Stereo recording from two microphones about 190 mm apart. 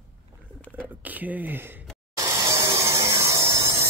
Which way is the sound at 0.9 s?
10° right (ahead or behind).